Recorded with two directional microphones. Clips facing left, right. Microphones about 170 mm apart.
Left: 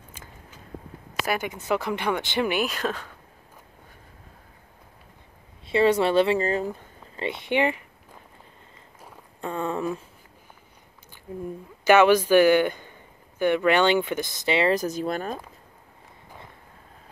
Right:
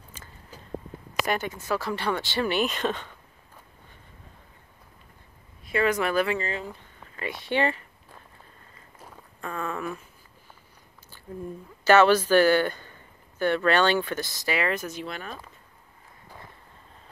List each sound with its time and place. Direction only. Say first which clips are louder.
1.1 s speech: even; 5° left (ahead or behind)
5.7 s speech: left 5 dB; 30° left (ahead or behind)
7.2 s speech: left 2 dB; 20° left (ahead or behind)
9.4 s speech: left 4 dB; 25° left (ahead or behind)
11.3 s a woman's voice: left 2 dB; 10° left (ahead or behind); by 15.4 s 45° left (ahead or behind)